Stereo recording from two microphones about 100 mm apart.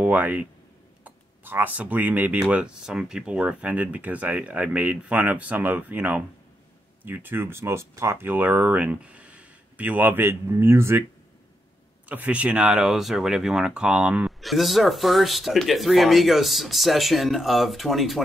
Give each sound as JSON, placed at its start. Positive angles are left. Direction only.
{"t": 0.0, "sound": "speech", "side_deg": -15}
{"t": 12.1, "sound": "speech", "side_deg": -15}
{"t": 14.4, "sound": "speech", "side_deg": 0}